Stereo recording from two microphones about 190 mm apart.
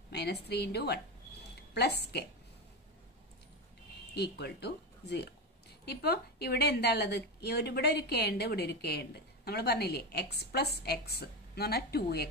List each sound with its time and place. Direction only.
0.1 s a woman's voice: 60° left (ahead or behind)
4.1 s a woman's voice: 60° left (ahead or behind)